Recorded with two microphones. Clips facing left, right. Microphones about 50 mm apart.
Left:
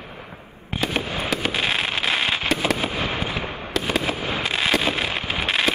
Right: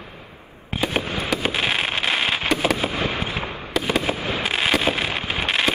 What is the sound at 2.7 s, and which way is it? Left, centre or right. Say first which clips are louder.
Fireworks: right 1 dB; right.